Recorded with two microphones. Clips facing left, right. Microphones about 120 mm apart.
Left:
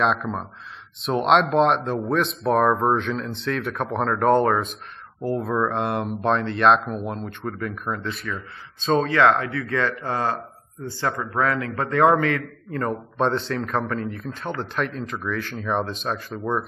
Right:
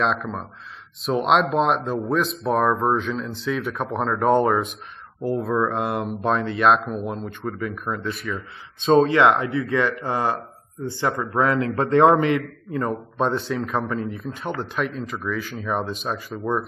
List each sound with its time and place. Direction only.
0.0 s speech: centre (ahead or behind)
5.4 s speech: centre (ahead or behind)
8.7 s speech: 20° right (ahead or behind)
12.7 s speech: centre (ahead or behind)